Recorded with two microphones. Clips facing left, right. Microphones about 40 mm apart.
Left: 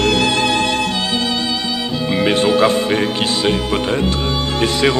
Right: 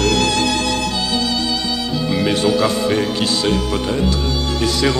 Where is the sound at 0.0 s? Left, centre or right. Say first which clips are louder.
Left 1 dB; centre.